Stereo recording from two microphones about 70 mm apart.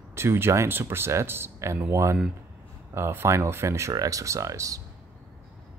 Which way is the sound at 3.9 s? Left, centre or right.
Right.